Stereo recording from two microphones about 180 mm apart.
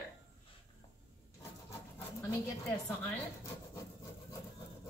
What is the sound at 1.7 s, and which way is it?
Dog, 15° left (ahead or behind).